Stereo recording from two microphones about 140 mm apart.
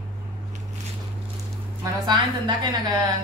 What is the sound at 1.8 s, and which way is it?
Speech, 30° right (ahead or behind).